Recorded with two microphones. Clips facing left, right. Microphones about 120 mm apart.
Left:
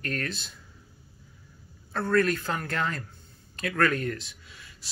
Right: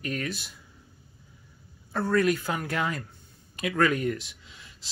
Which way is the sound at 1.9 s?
15° right (ahead or behind).